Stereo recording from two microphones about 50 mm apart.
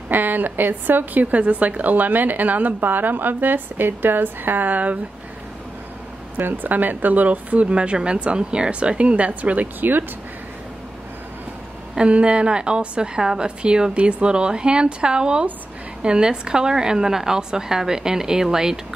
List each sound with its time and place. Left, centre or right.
0.1 s a woman's voice: right
6.3 s a woman's voice: right
7.6 s a woman's voice: right
11.9 s a woman's voice: right